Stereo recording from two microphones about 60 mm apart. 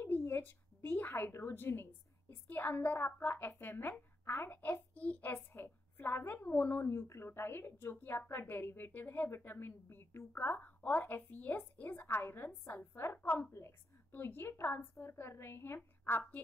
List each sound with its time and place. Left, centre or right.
0.0 s a sound: left
0.7 s a woman's voice: left
5.5 s a woman's voice: left
13.5 s a woman's voice: left
14.1 s a woman's voice: left